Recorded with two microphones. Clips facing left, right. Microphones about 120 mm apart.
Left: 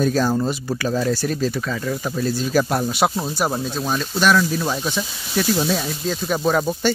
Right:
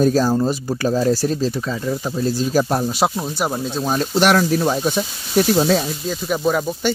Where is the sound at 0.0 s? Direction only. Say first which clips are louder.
Right 3 dB; 35° right (ahead or behind).